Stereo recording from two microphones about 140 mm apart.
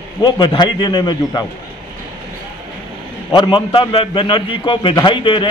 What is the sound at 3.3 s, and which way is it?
A man's voice, 35° left (ahead or behind).